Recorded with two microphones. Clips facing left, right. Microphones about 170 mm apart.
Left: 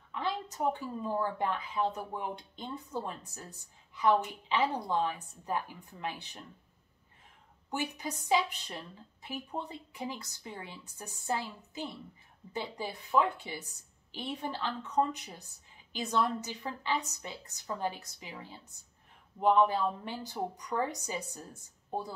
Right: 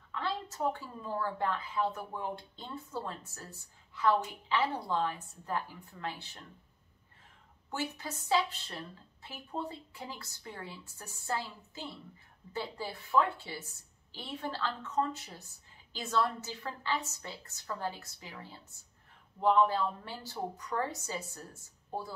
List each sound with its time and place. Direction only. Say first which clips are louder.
0.1 s a woman's voice: left 1 dB; 15° left (ahead or behind)
7.7 s a woman's voice: left 2 dB; 15° left (ahead or behind)